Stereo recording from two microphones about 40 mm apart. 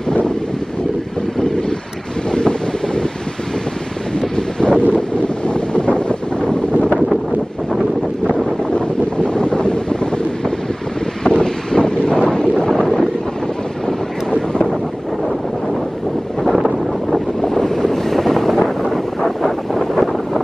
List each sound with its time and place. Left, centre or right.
1.4 s wind: centre
2.3 s wind noise: left
4.4 s wind noise: left
8.7 s wind noise: left
16.4 s wind noise: centre
17.5 s wind noise: centre